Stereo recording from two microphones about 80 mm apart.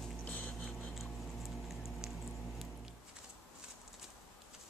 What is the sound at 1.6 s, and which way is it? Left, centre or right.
Patter, centre.